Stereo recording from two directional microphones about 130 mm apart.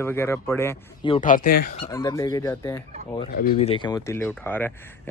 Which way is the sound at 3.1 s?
50° left (ahead or behind).